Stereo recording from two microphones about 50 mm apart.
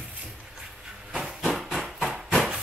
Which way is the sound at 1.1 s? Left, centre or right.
Centre.